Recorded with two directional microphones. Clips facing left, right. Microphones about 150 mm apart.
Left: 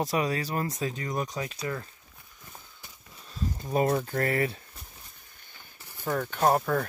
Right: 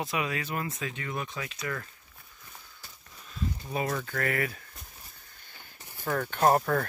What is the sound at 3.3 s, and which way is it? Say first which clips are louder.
Speech: left 2 dB; 35° left (ahead or behind).